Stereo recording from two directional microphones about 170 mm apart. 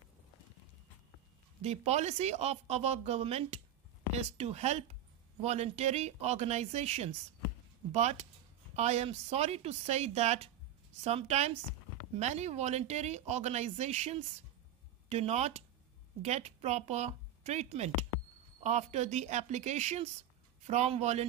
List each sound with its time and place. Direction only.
1.6 s speech: 40° right (ahead or behind)